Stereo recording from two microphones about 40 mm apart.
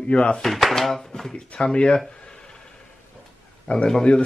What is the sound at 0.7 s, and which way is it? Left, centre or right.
Speech, centre.